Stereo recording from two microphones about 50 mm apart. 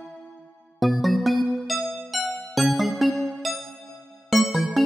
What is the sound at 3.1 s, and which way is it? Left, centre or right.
Music, centre.